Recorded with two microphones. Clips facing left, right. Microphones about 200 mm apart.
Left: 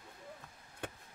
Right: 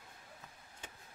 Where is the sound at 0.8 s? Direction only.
60° left (ahead or behind).